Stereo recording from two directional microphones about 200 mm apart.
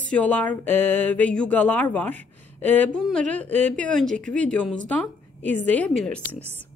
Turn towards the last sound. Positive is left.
turn(degrees=5)  # may be behind; listen again after turning